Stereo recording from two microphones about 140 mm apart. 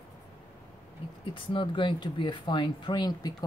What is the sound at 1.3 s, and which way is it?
Speech, 35° left (ahead or behind).